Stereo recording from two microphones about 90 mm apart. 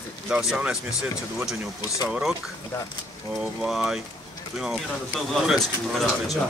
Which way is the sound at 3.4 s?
5° right (ahead or behind).